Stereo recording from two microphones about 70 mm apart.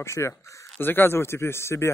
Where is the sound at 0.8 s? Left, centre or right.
Left.